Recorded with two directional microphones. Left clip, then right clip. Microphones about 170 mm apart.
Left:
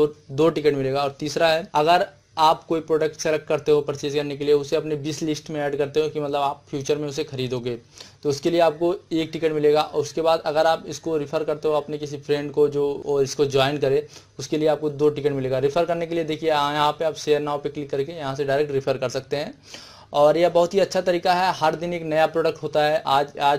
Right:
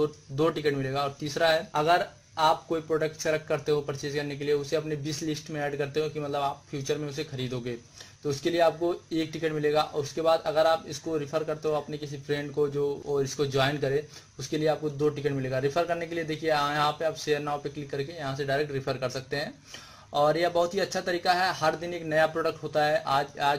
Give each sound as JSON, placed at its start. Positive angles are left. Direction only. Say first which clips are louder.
{"t": 0.0, "sound": "speech", "louder": "left 7 dB", "side_deg": 30}